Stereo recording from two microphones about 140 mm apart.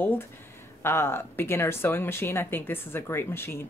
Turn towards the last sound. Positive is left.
turn(degrees=15)  # may be behind; listen again after turning